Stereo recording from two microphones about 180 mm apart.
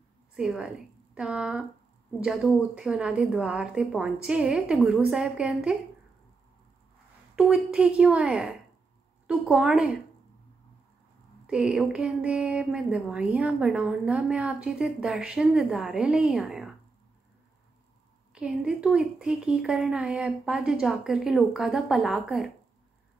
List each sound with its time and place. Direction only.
0.4 s a woman's voice: 5° right (ahead or behind)
7.3 s speech: 5° right (ahead or behind)
11.4 s speech: 5° right (ahead or behind)
18.3 s speech: 5° right (ahead or behind)